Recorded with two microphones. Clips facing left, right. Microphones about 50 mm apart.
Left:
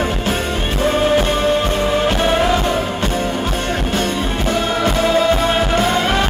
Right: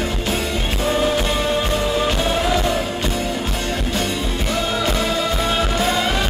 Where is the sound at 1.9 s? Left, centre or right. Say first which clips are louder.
Left 4 dB; left.